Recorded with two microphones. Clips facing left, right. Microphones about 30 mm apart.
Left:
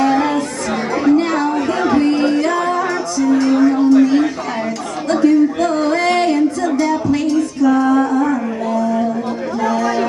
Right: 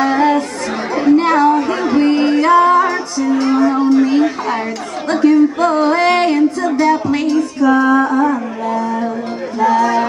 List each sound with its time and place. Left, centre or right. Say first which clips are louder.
0.0 s chatter: right 2 dB; centre
1.5 s music: right 2 dB; centre
2.0 s music: right 4 dB; centre
6.8 s a sound: right 4 dB; right
9.6 s music: right 6 dB; centre